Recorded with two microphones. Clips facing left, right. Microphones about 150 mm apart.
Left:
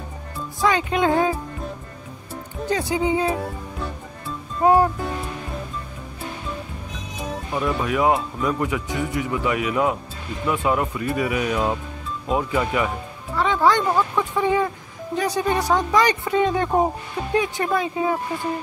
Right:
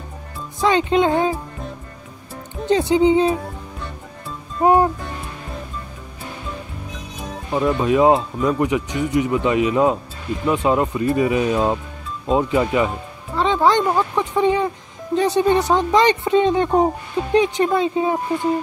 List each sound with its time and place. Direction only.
0.6 s speech: 25° right (ahead or behind)
2.6 s speech: 25° right (ahead or behind)
4.6 s speech: 20° right (ahead or behind)
7.5 s speech: 25° right (ahead or behind)